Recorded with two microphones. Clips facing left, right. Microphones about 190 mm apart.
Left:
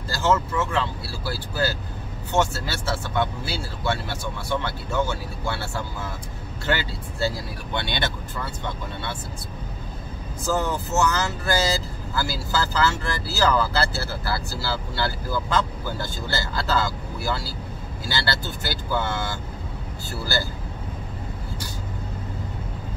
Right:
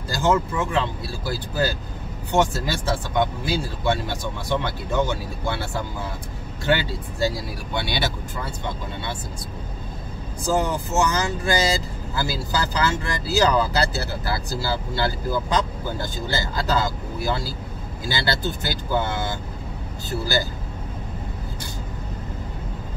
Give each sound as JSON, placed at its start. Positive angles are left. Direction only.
{"t": 0.1, "sound": "speech", "side_deg": -15}
{"t": 10.4, "sound": "speech", "side_deg": -15}